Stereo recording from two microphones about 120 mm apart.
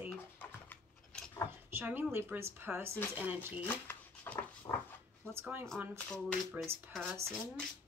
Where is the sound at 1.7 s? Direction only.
20° right (ahead or behind).